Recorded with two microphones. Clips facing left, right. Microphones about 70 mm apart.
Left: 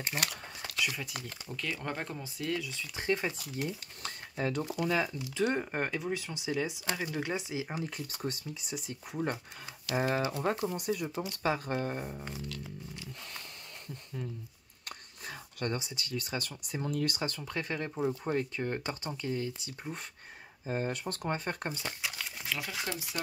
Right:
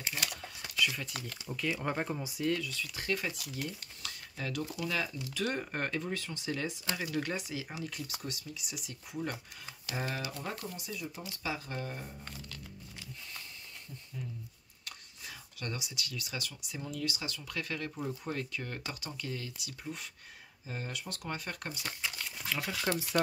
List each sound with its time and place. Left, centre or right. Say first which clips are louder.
0.0 s speech: left 3 dB; left
0.9 s speech: left 1 dB; centre
1.5 s speech: right 3 dB; centre
2.6 s speech: left 2 dB; left
3.3 s speech: left 3 dB; left
7.7 s speech: left 3 dB; left
10.8 s speech: left 8 dB; left
14.9 s speech: left 4 dB; left
17.6 s speech: left 4 dB; left
22.5 s speech: right 1 dB; centre
22.9 s speech: right 9 dB; right